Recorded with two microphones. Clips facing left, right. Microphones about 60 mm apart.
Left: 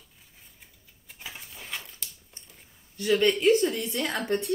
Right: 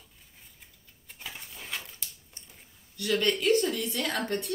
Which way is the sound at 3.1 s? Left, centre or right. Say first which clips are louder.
Left 4 dB; centre.